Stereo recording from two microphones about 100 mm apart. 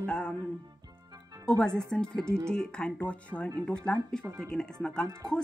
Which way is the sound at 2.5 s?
10° left (ahead or behind).